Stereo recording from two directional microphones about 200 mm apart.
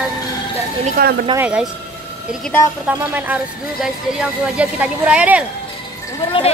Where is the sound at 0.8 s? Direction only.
45° right (ahead or behind).